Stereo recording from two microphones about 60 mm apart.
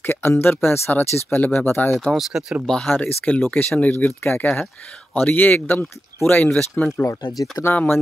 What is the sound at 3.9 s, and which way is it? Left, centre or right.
Speech, left.